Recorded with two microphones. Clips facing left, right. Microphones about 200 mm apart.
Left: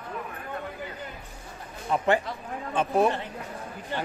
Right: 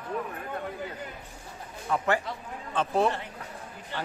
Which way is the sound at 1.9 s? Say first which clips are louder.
Left 3 dB; 20° left (ahead or behind).